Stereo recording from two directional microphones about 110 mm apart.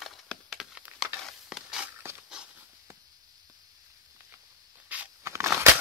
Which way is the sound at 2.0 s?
20° right (ahead or behind).